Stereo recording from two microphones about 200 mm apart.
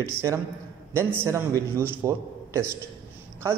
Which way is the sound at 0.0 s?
15° right (ahead or behind).